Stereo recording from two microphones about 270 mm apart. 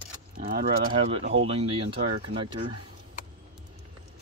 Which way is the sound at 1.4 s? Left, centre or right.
Right.